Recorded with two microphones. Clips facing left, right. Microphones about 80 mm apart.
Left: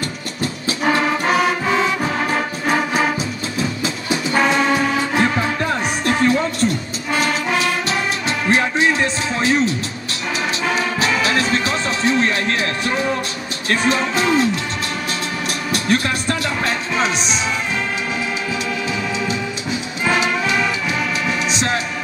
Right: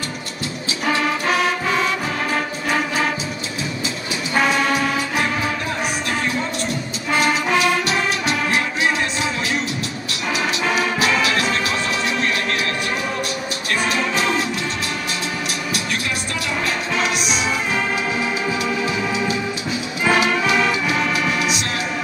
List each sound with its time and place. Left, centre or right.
0.4 s music: left
2.3 s music: centre
4.7 s music: left
8.3 s music: left
11.0 s music: left
13.7 s music: left
15.7 s music: left
20.1 s music: centre